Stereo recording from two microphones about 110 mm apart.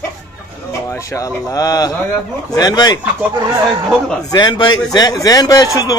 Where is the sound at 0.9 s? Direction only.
25° left (ahead or behind).